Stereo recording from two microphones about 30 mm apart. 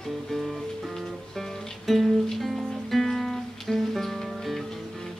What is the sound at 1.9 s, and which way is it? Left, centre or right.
Music, centre.